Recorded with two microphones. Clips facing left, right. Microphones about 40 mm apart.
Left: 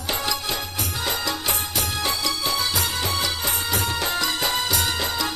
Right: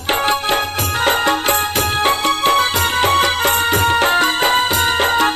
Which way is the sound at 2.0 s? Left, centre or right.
Right.